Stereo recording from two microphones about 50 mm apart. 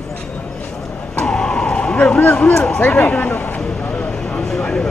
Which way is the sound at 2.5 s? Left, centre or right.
Centre.